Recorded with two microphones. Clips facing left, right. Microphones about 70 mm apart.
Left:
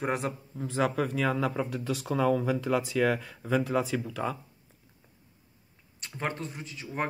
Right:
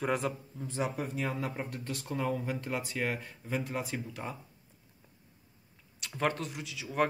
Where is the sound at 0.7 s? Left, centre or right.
Left.